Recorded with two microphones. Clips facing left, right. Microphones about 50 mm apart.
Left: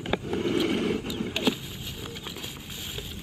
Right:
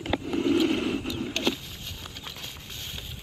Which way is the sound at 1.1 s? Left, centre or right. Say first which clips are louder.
Left 1 dB; centre.